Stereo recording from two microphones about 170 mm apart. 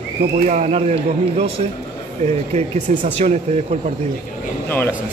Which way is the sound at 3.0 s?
40° right (ahead or behind).